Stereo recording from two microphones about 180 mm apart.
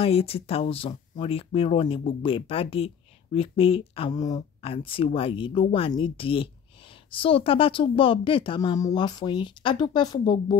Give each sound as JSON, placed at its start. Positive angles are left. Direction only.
{"t": 0.0, "sound": "a woman's voice", "side_deg": 30}